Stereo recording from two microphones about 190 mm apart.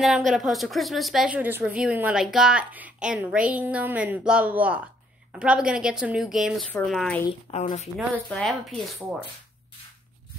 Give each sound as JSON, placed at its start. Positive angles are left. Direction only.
{"t": 0.0, "sound": "a woman's voice", "side_deg": 0}
{"t": 7.5, "sound": "speech", "side_deg": 35}
{"t": 8.3, "sound": "a woman's voice", "side_deg": 5}